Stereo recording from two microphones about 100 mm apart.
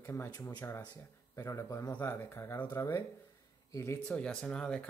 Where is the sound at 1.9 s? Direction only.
20° left (ahead or behind).